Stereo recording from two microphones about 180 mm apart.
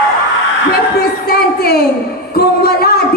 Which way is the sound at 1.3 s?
60° left (ahead or behind).